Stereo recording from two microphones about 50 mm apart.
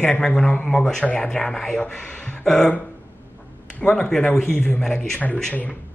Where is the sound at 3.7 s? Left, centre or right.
Left.